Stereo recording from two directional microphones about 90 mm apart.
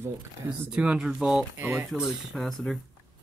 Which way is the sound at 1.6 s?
20° right (ahead or behind).